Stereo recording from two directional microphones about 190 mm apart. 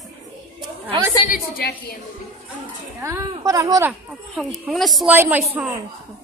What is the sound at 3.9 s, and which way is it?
A woman's voice, centre (ahead or behind).